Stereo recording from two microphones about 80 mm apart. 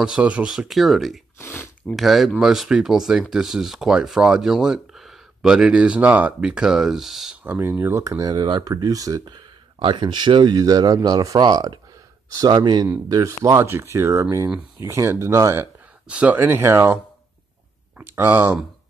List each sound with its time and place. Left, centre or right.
0.0 s speech: centre
0.5 s speech: centre
1.4 s speech: left
2.0 s speech: centre
7.4 s speech: right
8.0 s speech: right
9.2 s speech: right
10.5 s speech: right
13.1 s speech: right
16.1 s speech: centre
16.3 s speech: right